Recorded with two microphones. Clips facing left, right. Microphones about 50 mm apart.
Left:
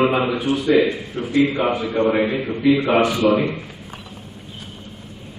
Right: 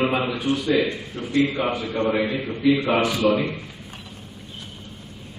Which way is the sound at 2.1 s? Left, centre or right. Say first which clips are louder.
Left 4 dB; left.